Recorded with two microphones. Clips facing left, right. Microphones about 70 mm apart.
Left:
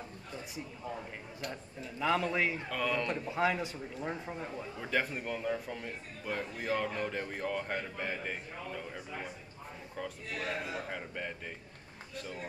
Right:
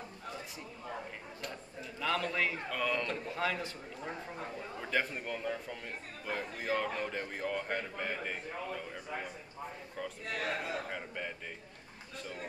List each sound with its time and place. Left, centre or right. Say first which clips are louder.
1.5 s a sound: left 2 dB; centre
2.7 s a man's voice: left 1 dB; centre
3.3 s a man's voice: left 4 dB; centre
4.7 s a man's voice: left 1 dB; centre
10.2 s a man's voice: right 3 dB; right
10.9 s a man's voice: left 1 dB; centre